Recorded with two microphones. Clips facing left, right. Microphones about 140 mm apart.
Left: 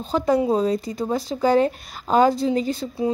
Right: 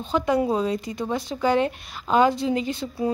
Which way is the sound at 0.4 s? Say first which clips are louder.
Left 3 dB; 35° left (ahead or behind).